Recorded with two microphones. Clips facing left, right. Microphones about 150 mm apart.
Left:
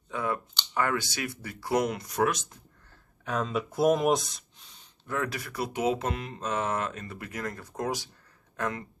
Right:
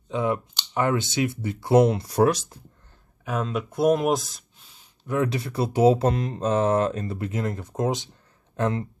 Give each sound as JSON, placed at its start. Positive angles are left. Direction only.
{"t": 0.1, "sound": "speech", "side_deg": -20}
{"t": 3.3, "sound": "speech", "side_deg": 0}
{"t": 5.0, "sound": "speech", "side_deg": -20}